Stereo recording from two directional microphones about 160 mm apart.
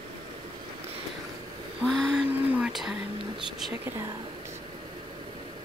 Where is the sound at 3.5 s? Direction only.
Centre (ahead or behind).